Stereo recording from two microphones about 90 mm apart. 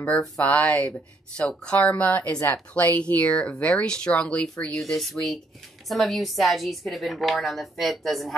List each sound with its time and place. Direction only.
0.5 s a woman's voice: 15° left (ahead or behind)